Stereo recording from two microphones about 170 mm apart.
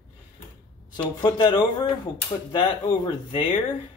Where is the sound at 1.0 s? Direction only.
25° left (ahead or behind).